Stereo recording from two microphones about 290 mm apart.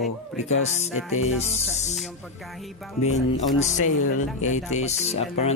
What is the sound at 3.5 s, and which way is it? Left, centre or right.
Speech, left.